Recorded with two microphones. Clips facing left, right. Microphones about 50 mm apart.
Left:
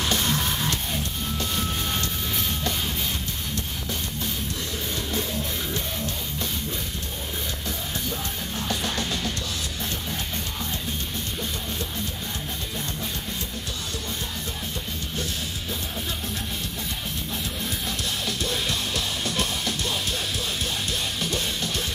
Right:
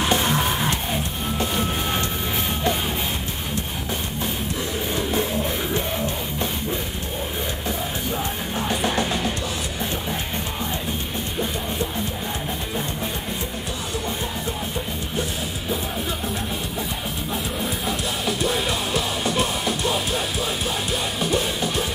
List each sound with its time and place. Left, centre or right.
0.0 s music: right
4.9 s music: right
8.5 s music: right
17.8 s music: centre
21.2 s music: centre